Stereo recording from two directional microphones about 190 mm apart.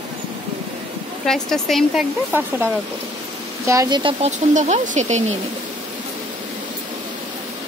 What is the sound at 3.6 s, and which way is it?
Speech, 15° right (ahead or behind).